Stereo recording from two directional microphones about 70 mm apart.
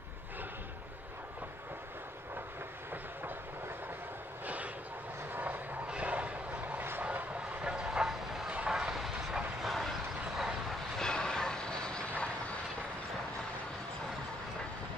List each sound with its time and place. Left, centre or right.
5.3 s vehicle: right
7.0 s train: right
8.5 s vehicle: centre
11.0 s vehicle: centre